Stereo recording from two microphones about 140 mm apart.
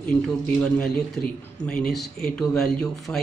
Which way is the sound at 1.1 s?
5° left (ahead or behind).